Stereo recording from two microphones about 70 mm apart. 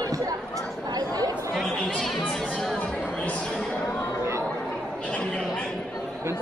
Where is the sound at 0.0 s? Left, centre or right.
Right.